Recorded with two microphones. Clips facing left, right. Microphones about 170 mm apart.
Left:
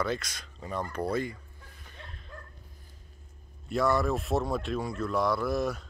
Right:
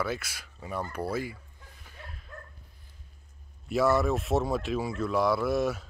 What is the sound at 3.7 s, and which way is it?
Speech, 5° right (ahead or behind).